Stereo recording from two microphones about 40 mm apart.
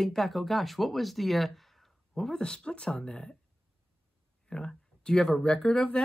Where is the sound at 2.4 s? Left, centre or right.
Left.